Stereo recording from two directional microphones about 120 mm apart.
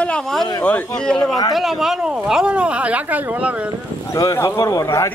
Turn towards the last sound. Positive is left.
turn(degrees=25)  # may be behind; listen again after turning